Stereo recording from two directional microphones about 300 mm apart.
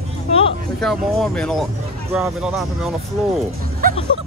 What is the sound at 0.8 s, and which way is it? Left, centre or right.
Speech, centre.